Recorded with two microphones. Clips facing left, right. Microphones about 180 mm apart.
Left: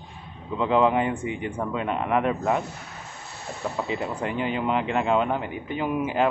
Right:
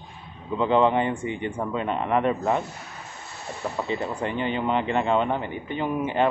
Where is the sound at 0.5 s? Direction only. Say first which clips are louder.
Right 1 dB; centre (ahead or behind).